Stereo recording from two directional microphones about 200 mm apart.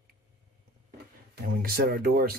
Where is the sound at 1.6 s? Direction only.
50° right (ahead or behind).